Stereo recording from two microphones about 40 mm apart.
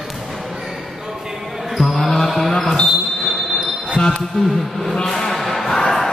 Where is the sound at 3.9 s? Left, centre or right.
Left.